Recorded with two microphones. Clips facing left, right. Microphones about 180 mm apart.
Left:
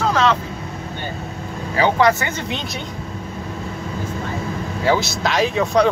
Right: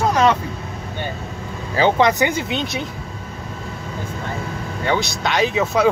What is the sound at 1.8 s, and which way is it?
Speech, 20° right (ahead or behind).